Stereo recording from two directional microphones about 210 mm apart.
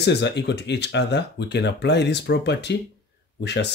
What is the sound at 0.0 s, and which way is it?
Speech, 55° left (ahead or behind).